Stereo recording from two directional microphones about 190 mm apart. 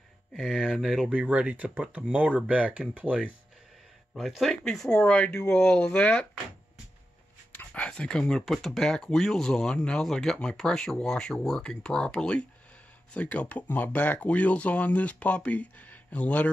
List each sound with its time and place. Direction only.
0.3 s speech: centre (ahead or behind)
7.5 s speech: 5° left (ahead or behind)